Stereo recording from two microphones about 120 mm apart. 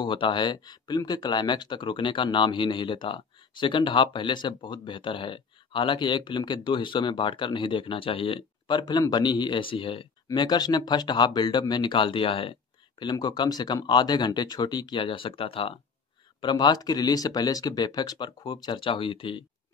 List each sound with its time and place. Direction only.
0.0 s speech: 45° left (ahead or behind)
10.2 s speech: 35° left (ahead or behind)
13.0 s speech: 35° left (ahead or behind)
16.3 s speech: 40° left (ahead or behind)